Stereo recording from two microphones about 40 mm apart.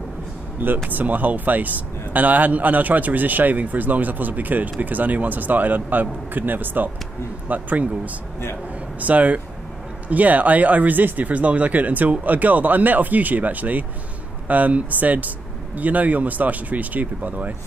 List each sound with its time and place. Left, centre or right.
0.8 s speech: right
7.4 s speech: right